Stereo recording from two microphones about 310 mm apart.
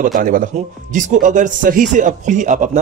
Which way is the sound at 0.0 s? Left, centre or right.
Right.